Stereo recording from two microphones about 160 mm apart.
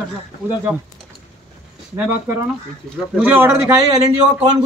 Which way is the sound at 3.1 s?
10° right (ahead or behind).